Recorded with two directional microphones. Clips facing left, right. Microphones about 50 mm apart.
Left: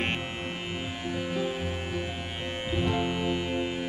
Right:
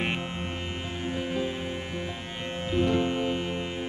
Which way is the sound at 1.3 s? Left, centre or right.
Centre.